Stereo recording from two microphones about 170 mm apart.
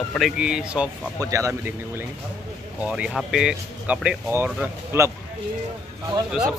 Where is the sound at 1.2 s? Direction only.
20° right (ahead or behind).